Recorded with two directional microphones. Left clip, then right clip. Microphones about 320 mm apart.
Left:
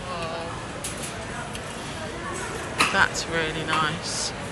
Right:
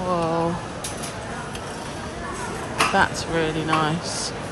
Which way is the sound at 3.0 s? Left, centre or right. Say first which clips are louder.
Right 2 dB; centre.